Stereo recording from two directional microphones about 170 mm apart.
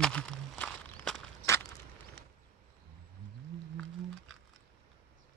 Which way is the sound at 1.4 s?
15° left (ahead or behind).